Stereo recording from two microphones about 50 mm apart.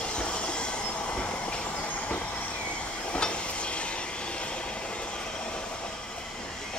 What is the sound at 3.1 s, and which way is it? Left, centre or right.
Train, left.